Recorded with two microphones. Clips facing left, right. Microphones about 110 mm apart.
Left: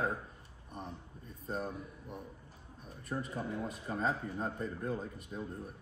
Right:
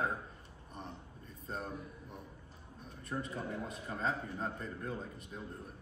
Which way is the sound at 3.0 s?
5° left (ahead or behind).